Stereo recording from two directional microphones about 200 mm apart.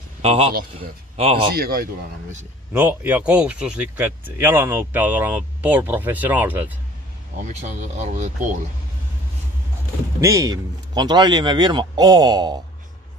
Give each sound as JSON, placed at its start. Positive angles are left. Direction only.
{"t": 0.2, "sound": "a man's voice", "side_deg": -30}
{"t": 1.5, "sound": "speech", "side_deg": -50}
{"t": 2.8, "sound": "speech", "side_deg": -10}
{"t": 7.4, "sound": "speech", "side_deg": -35}
{"t": 10.2, "sound": "a man's voice", "side_deg": -15}